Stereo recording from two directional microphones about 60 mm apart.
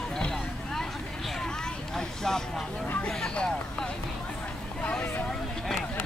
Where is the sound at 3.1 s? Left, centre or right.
Centre.